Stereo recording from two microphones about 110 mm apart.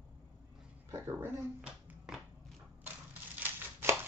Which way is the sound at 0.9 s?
20° right (ahead or behind).